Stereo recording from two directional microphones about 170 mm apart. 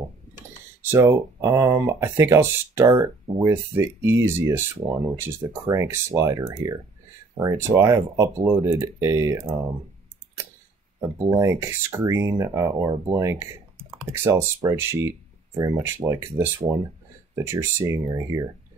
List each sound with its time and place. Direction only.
0.8 s speech: 15° right (ahead or behind)
11.3 s speech: 15° right (ahead or behind)